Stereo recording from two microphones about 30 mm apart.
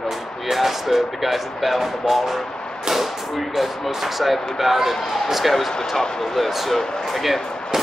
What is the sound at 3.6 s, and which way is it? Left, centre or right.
Speech, centre.